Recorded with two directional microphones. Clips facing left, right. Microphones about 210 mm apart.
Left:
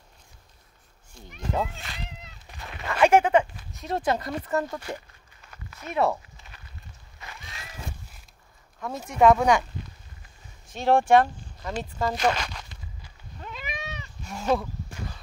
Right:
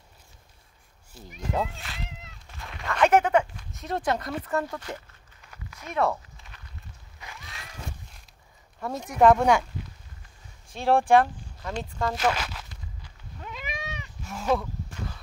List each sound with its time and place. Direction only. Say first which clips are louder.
1.1 s cat: even; 5° right (ahead or behind)
2.6 s a sound: left 2 dB; 5° left (ahead or behind)
4.6 s speech: left 2 dB; 10° left (ahead or behind)
6.0 s speech: left 1 dB; 20° left (ahead or behind)
6.3 s a sound: even; 5° left (ahead or behind)
8.7 s speech: even; centre (ahead or behind)
10.7 s speech: left 1 dB; centre (ahead or behind)
13.4 s cat: even; 15° right (ahead or behind)
14.2 s a sound: left 1 dB; centre (ahead or behind)